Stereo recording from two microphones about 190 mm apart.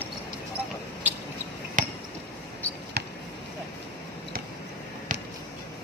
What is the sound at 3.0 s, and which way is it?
Basketball bounce, 60° right (ahead or behind).